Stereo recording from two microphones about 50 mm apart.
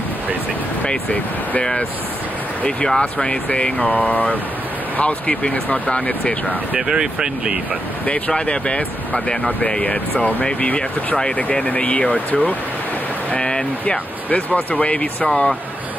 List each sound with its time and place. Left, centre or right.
1.6 s speech: centre
3.0 s speech: centre
6.7 s speech: centre
8.3 s speech: centre
13.4 s speech: centre
14.3 s speech: left